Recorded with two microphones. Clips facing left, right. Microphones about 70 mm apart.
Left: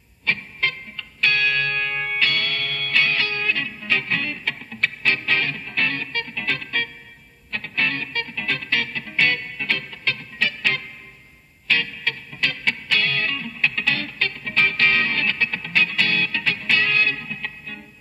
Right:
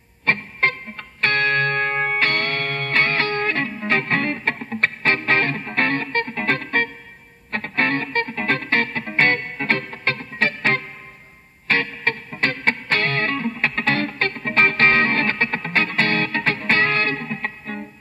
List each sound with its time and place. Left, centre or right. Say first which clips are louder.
0.2 s music: right 4 dB; right